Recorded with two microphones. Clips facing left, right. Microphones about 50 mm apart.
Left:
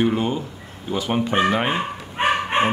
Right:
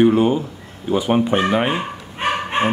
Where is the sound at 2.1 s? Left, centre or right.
Left.